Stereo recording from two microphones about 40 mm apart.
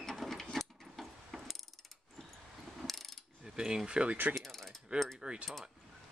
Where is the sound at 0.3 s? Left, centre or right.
Centre.